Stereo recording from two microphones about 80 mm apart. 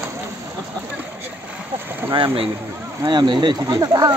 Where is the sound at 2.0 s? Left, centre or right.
Right.